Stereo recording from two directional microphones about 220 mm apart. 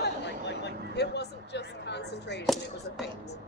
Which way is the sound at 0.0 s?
50° left (ahead or behind).